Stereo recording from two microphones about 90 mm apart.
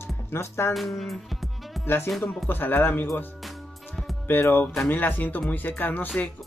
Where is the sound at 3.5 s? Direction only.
Centre (ahead or behind).